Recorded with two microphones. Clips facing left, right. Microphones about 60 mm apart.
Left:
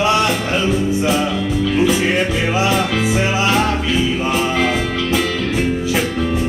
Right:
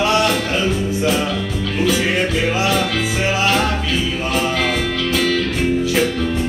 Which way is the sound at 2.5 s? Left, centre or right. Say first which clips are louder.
Left 4 dB; centre.